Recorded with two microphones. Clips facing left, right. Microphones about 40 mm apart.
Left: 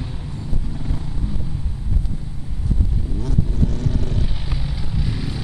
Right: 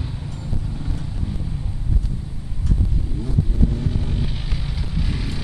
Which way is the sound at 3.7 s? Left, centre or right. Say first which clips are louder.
Left 1 dB; centre.